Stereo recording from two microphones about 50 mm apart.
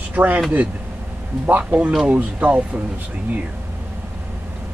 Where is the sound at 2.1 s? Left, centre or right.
Right.